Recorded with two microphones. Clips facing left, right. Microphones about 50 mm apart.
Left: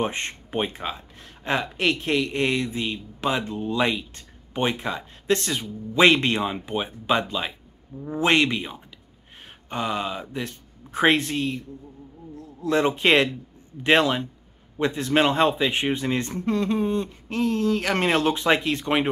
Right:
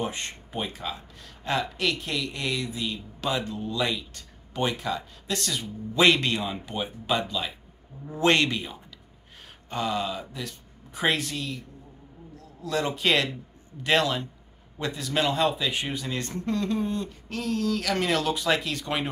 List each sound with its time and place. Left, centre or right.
0.0 s speech: left
8.2 s speech: centre